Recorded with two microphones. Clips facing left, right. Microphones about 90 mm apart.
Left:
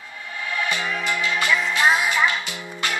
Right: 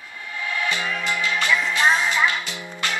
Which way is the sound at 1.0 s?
15° left (ahead or behind).